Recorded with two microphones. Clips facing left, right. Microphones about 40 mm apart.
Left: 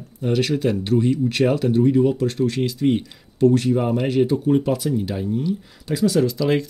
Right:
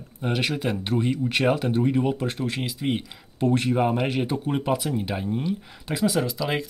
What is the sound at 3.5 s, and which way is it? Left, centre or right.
Speech, right.